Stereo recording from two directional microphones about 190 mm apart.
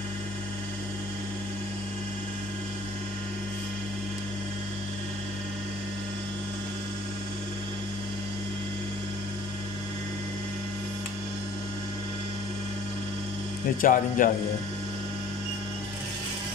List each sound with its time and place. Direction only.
13.7 s speech: 45° left (ahead or behind)